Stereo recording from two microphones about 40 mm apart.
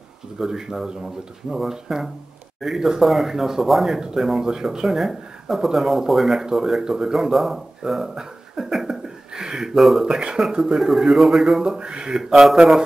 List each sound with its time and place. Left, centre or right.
0.4 s speech: centre
4.8 s speech: centre
8.8 s a sound: centre
9.8 s speech: centre
10.0 s speech: centre
10.6 s speech: centre